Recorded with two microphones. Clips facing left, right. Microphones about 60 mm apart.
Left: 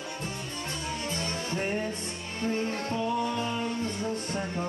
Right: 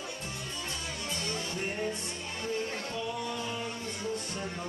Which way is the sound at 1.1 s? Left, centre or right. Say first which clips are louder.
Left 1 dB; left.